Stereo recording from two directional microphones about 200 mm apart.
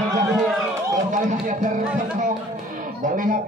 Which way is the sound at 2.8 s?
40° right (ahead or behind).